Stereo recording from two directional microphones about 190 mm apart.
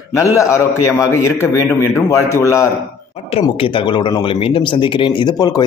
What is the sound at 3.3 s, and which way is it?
Speech, 30° left (ahead or behind).